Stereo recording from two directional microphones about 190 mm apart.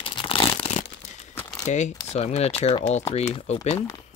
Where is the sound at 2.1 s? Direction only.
35° left (ahead or behind).